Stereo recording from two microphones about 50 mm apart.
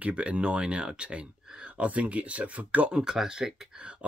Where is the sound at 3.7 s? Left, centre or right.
Centre.